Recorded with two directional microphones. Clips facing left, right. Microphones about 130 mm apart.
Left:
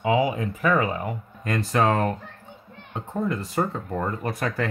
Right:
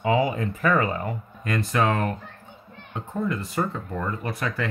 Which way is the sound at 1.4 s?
35° left (ahead or behind).